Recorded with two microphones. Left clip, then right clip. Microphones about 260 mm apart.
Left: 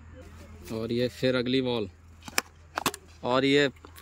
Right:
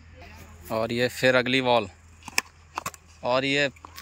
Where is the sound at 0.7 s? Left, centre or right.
Centre.